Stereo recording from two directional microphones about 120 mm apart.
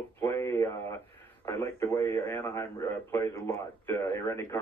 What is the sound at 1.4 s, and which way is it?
Radio, 20° left (ahead or behind).